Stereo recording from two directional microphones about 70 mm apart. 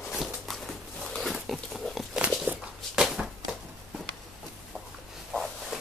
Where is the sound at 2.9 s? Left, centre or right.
Centre.